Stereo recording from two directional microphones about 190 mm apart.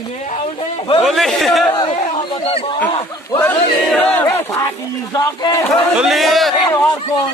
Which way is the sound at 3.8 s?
5° left (ahead or behind).